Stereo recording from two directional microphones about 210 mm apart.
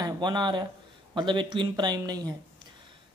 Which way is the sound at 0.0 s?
20° right (ahead or behind).